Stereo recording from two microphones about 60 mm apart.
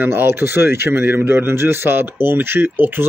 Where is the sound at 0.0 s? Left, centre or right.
Right.